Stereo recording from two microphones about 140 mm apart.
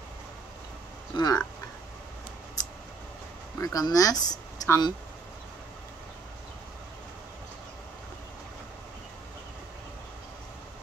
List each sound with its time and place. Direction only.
1.1 s speech: 30° left (ahead or behind)
2.6 s scissors: 25° left (ahead or behind)
3.6 s speech: 25° left (ahead or behind)